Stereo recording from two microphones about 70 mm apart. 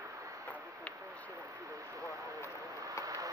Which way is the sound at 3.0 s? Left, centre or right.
Right.